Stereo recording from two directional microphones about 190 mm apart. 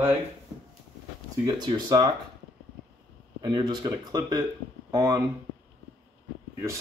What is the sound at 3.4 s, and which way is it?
Speech, 20° right (ahead or behind).